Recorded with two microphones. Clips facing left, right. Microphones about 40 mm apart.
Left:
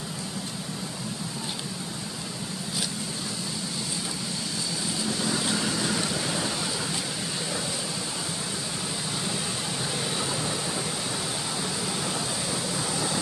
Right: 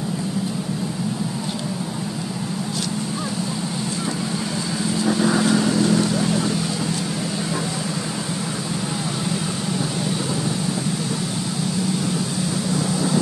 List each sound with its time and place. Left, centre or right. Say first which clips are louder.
5.0 s vehicle: right 11 dB; right
5.5 s vehicle: right 9 dB; centre
12.7 s vehicle: right 10 dB; centre